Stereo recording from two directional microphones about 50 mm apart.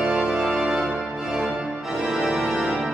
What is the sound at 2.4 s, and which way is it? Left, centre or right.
Organ, centre.